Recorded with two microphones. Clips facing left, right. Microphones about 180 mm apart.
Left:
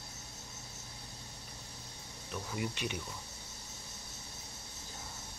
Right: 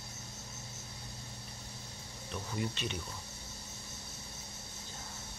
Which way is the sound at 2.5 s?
10° left (ahead or behind).